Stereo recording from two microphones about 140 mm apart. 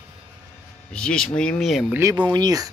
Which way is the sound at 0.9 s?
5° left (ahead or behind).